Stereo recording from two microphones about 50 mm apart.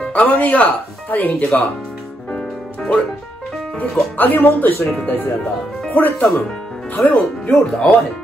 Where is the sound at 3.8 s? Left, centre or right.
Left.